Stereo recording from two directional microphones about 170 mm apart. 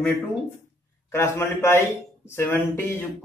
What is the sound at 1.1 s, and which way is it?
A man's voice, 15° left (ahead or behind).